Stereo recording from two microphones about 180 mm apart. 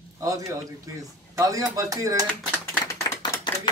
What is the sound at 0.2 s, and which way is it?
Speech, 20° right (ahead or behind).